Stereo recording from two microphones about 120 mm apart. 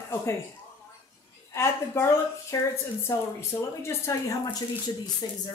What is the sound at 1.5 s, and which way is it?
A man's voice, 25° left (ahead or behind).